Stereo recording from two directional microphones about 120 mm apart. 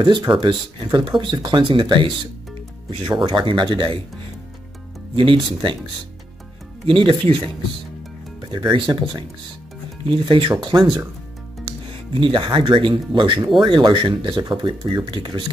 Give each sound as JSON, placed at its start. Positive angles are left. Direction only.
{"t": 0.0, "sound": "speech", "side_deg": -40}
{"t": 5.1, "sound": "speech", "side_deg": -45}
{"t": 6.9, "sound": "speech", "side_deg": -45}
{"t": 8.4, "sound": "speech", "side_deg": -40}